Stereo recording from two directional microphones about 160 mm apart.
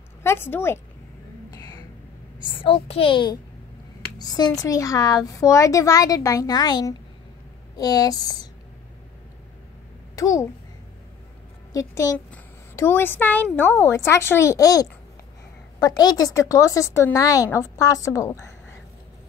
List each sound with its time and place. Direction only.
0.2 s a woman's voice: 15° left (ahead or behind)
1.5 s a sound: 25° left (ahead or behind)
2.5 s a child's voice: 35° left (ahead or behind)
10.1 s a child's voice: 20° left (ahead or behind)
11.7 s a woman's voice: 20° left (ahead or behind)